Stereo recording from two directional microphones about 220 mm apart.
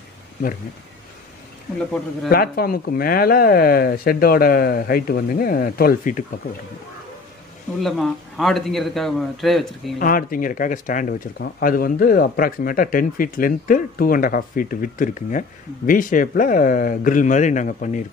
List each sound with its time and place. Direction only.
2.2 s speech: 45° left (ahead or behind)
7.8 s a man's voice: centre (ahead or behind)
9.9 s speech: 40° left (ahead or behind)